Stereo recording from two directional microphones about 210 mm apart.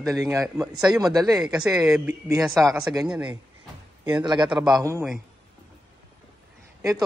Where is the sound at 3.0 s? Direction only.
5° right (ahead or behind).